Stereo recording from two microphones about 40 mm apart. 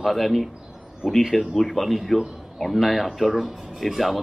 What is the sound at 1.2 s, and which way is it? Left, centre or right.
Speech, centre.